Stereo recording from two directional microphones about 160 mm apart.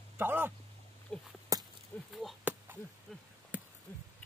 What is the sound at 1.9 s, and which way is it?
Speech, 10° left (ahead or behind).